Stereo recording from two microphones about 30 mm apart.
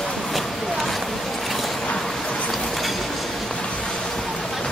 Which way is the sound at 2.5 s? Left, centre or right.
Centre.